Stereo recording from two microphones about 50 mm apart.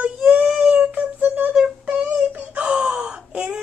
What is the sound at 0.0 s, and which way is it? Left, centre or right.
Child singing, right.